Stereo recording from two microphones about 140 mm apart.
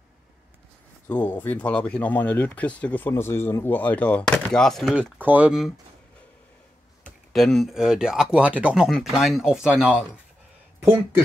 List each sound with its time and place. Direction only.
1.0 s speech: 15° left (ahead or behind)
4.9 s speech: 10° right (ahead or behind)
7.3 s speech: centre (ahead or behind); by 11.2 s 15° right (ahead or behind)